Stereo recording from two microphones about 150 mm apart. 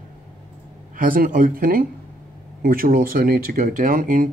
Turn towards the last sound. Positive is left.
turn(degrees=-65)  # may be behind; listen again after turning